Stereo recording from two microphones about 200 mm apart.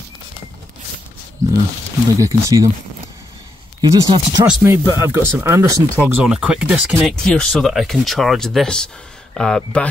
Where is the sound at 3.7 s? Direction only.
20° right (ahead or behind).